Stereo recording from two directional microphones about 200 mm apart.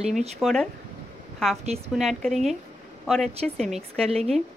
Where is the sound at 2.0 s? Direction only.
Centre (ahead or behind).